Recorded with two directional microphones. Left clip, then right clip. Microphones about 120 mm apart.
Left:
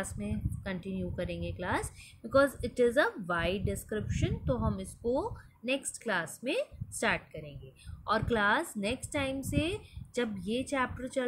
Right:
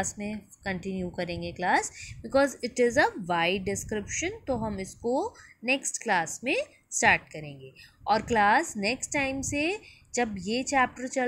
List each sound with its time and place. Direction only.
0.0 s a woman's voice: 40° right (ahead or behind)